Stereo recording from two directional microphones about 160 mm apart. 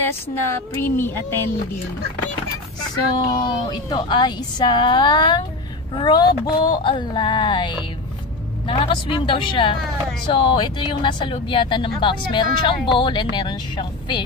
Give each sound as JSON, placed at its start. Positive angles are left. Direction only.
{"t": 0.0, "sound": "speech", "side_deg": 15}
{"t": 3.3, "sound": "a woman's voice", "side_deg": 25}